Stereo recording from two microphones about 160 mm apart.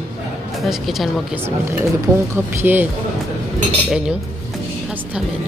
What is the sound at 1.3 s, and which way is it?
Speech, 15° right (ahead or behind).